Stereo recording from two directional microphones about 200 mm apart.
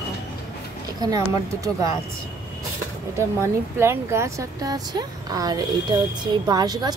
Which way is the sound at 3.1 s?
15° right (ahead or behind).